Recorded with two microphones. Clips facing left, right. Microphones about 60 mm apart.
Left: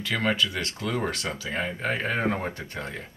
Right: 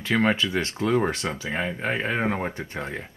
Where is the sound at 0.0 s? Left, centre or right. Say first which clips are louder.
Right 3 dB; right.